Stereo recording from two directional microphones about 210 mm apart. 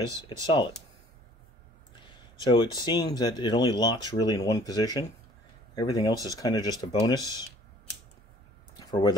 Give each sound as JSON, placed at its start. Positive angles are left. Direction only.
{"t": 0.0, "sound": "speech", "side_deg": -15}
{"t": 2.4, "sound": "speech", "side_deg": 20}
{"t": 8.7, "sound": "a sound", "side_deg": 20}